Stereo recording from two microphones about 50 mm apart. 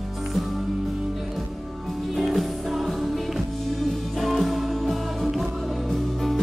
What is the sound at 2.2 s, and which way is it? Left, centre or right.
Music, centre.